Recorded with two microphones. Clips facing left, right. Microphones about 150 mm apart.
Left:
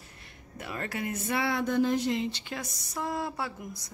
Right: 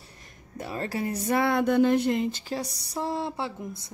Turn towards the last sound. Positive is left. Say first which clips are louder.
# right 4 dB
turn(degrees=-25)  # may be behind; listen again after turning